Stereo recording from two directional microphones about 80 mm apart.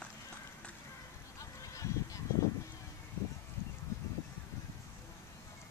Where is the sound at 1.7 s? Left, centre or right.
Left.